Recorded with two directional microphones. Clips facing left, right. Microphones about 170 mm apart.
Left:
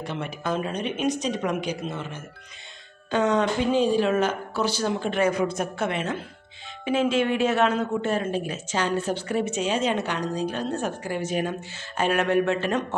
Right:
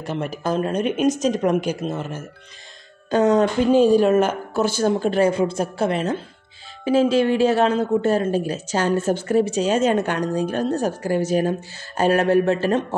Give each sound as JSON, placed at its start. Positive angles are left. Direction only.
{"t": 0.0, "sound": "a man's voice", "side_deg": -45}